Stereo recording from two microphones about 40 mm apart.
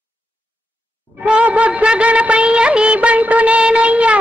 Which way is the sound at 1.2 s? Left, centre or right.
Right.